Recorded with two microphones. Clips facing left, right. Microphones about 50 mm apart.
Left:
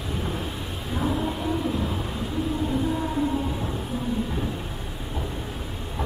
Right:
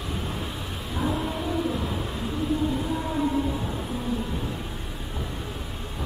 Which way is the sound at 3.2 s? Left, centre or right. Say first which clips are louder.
Even; centre.